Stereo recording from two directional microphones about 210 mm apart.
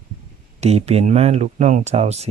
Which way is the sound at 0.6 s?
30° right (ahead or behind).